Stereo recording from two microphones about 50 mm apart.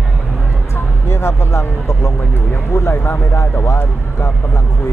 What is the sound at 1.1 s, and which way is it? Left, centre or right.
Speech, left.